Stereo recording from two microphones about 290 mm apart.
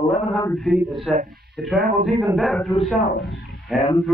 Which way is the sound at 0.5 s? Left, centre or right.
Centre.